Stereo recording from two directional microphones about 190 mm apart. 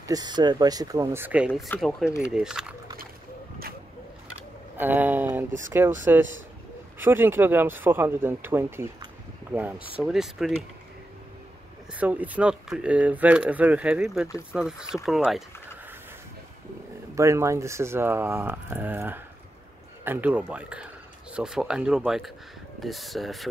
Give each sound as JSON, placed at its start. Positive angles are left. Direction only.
{"t": 0.0, "sound": "speech", "side_deg": -20}
{"t": 4.7, "sound": "speech", "side_deg": -10}
{"t": 11.9, "sound": "speech", "side_deg": -10}
{"t": 17.1, "sound": "speech", "side_deg": -15}